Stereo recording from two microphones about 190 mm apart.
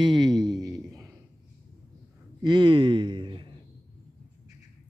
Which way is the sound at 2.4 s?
25° right (ahead or behind).